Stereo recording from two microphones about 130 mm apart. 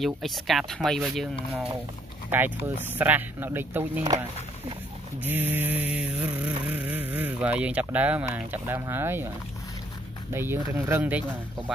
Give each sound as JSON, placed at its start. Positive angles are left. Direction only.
{"t": 0.0, "sound": "speech", "side_deg": 0}
{"t": 2.3, "sound": "speech", "side_deg": -15}
{"t": 5.2, "sound": "speech", "side_deg": -15}
{"t": 10.3, "sound": "speech", "side_deg": -15}